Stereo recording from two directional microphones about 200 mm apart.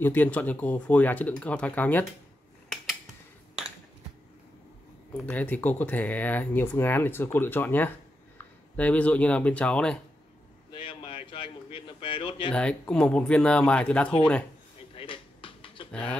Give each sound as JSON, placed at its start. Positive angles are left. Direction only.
{"t": 0.0, "sound": "speech", "side_deg": 10}
{"t": 5.1, "sound": "speech", "side_deg": 5}
{"t": 10.7, "sound": "a sound", "side_deg": 25}
{"t": 12.5, "sound": "speech", "side_deg": 5}
{"t": 15.0, "sound": "a sound", "side_deg": 25}
{"t": 15.9, "sound": "speech", "side_deg": 5}